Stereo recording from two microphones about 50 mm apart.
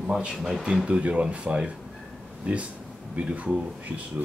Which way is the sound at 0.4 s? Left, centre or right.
Centre.